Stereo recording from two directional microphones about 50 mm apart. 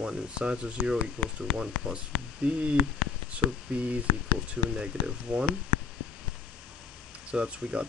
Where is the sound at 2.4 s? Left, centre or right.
Right.